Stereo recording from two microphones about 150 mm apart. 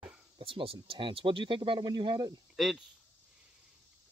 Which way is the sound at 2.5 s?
Centre (ahead or behind).